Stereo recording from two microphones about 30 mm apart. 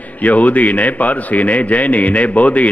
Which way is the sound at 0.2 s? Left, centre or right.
Left.